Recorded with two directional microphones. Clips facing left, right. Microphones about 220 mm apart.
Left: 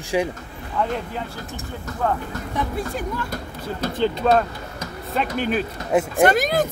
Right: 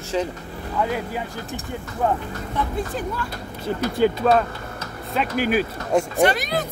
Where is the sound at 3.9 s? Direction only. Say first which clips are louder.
Right 1 dB; 10° right (ahead or behind).